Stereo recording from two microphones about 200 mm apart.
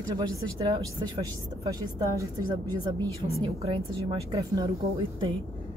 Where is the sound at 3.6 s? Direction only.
25° right (ahead or behind).